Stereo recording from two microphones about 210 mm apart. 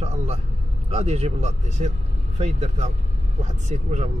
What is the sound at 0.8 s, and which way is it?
A man's voice, 30° right (ahead or behind).